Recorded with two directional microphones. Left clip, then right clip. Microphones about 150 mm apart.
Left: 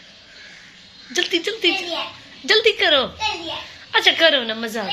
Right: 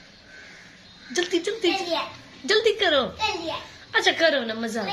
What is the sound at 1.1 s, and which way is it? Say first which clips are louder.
A woman's voice: left 4 dB; 15° left (ahead or behind).